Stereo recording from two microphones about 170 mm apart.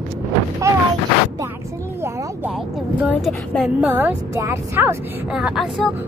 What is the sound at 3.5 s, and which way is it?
Speech, centre (ahead or behind).